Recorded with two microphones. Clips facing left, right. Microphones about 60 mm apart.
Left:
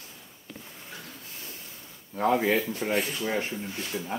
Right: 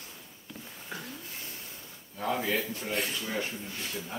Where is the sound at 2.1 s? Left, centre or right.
Left.